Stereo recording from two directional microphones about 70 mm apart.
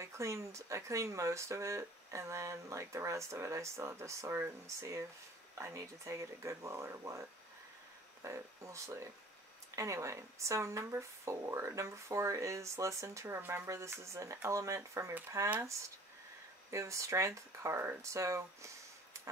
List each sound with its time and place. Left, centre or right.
0.0 s speech: right
16.7 s speech: right